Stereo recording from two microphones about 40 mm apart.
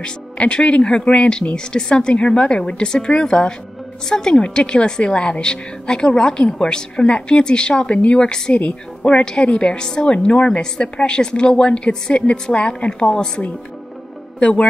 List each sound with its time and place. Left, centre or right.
0.0 s a woman's voice: left
9.2 s a woman's voice: left
14.4 s a woman's voice: left